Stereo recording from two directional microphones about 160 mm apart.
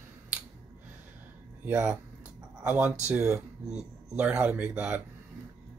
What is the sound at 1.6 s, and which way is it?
Speech, 5° right (ahead or behind).